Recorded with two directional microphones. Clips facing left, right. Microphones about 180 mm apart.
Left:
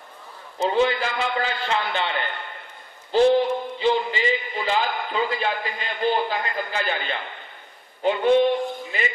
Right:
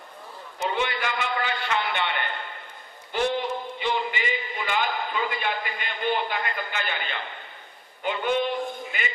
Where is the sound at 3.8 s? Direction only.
30° left (ahead or behind).